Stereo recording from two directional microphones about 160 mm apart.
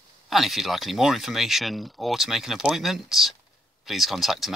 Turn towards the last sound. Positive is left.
turn(degrees=0)  # may be behind; listen again after turning